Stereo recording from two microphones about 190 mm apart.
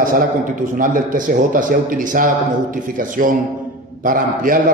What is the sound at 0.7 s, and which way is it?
A man's voice, 45° right (ahead or behind).